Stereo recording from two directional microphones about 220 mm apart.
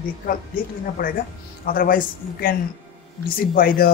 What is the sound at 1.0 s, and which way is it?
Speech, 40° left (ahead or behind).